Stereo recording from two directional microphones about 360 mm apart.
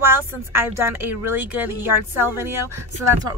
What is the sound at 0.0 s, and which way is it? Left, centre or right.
Speech, centre.